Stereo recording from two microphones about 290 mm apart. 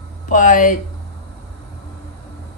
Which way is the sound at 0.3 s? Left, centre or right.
Left.